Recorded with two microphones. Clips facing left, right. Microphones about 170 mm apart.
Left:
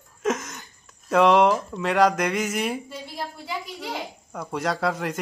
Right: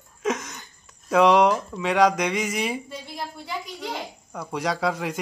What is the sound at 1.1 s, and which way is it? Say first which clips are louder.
Speech: even; centre (ahead or behind).